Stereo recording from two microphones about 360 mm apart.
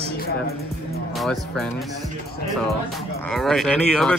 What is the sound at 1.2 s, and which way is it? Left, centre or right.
Speech, centre.